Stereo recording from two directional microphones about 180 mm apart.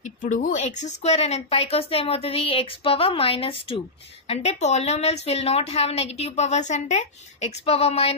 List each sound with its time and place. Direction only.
0.2 s a woman's voice: 45° left (ahead or behind)